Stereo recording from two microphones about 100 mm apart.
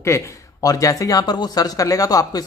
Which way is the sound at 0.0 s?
30° left (ahead or behind).